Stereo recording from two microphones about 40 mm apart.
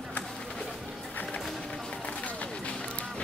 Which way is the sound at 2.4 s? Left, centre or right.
Left.